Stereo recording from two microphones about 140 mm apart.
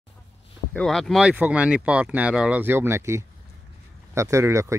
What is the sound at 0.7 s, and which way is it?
Speech, centre (ahead or behind).